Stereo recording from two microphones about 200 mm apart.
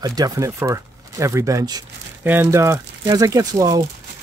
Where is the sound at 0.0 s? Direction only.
20° right (ahead or behind).